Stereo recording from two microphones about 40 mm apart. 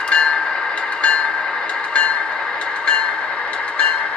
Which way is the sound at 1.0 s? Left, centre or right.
Left.